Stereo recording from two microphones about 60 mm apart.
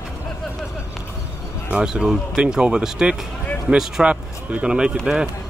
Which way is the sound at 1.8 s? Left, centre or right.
Centre.